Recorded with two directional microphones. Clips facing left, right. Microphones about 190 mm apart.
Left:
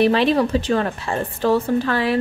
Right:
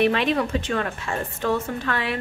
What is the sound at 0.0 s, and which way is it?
A woman's voice, 35° left (ahead or behind).